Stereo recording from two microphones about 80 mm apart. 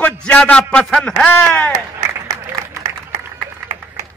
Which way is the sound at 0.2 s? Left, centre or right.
Centre.